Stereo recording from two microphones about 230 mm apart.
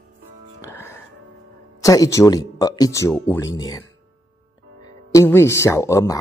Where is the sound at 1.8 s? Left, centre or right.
Centre.